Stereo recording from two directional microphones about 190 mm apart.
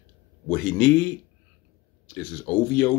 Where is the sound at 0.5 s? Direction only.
5° left (ahead or behind).